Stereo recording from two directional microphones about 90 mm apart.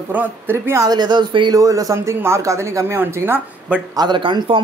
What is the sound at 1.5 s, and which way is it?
Speech, 40° right (ahead or behind).